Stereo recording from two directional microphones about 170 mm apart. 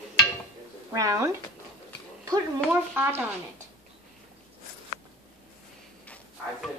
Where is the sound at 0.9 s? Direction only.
20° right (ahead or behind).